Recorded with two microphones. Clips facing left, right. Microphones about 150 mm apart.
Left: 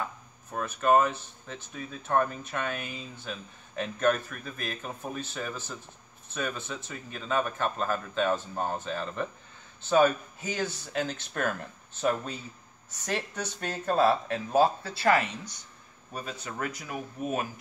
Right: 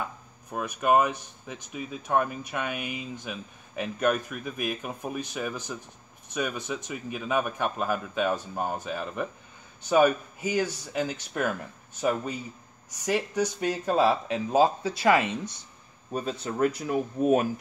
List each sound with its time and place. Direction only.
0.5 s speech: 10° right (ahead or behind)
16.1 s speech: 30° right (ahead or behind)